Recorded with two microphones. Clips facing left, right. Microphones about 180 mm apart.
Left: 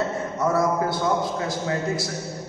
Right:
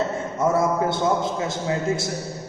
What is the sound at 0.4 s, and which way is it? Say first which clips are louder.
Speech: right 2 dB; 25° right (ahead or behind).